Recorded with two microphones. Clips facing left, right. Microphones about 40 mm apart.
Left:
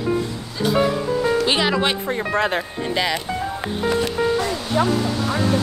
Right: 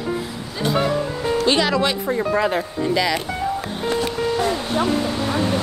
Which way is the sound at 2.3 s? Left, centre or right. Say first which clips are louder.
Left 1 dB; left.